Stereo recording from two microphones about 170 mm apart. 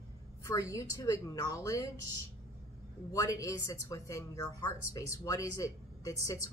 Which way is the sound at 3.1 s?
20° left (ahead or behind).